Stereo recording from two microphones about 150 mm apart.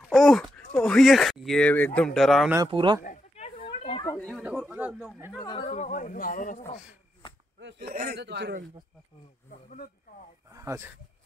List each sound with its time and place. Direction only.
0.1 s speech: centre (ahead or behind)
2.7 s speech: 35° right (ahead or behind)
3.0 s a sound: 50° left (ahead or behind)
3.6 s a sound: 35° left (ahead or behind)
4.4 s a man's voice: 10° right (ahead or behind)
5.4 s speech: 30° left (ahead or behind)
5.7 s a man's voice: 55° left (ahead or behind)
7.9 s a man's voice: 80° right
9.5 s speech: 70° left (ahead or behind)
10.5 s speech: 20° right (ahead or behind)